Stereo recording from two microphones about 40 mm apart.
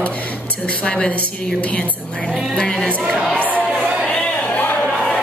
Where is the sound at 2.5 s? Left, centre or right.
Centre.